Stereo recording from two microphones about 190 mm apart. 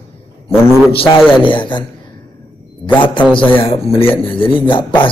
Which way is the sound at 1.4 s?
25° left (ahead or behind).